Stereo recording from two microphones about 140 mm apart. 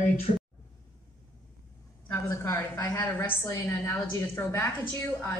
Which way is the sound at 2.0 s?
15° left (ahead or behind).